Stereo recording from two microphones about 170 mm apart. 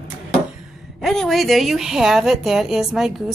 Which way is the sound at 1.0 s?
Centre (ahead or behind).